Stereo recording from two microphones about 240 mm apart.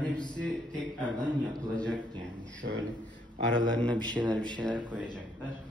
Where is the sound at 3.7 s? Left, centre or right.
Centre.